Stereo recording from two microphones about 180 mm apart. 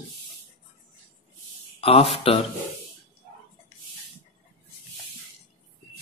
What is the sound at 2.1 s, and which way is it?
Speech, 30° left (ahead or behind).